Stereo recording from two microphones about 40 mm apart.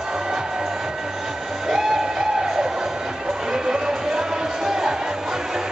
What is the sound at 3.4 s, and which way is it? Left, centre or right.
Music, centre.